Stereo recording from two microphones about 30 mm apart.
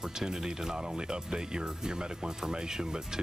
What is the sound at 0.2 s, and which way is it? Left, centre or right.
Speech, right.